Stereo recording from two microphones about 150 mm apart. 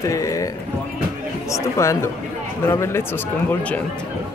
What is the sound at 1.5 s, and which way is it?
Speech, 20° left (ahead or behind).